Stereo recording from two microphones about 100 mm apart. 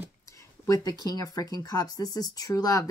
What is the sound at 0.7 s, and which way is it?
Speech, 40° left (ahead or behind).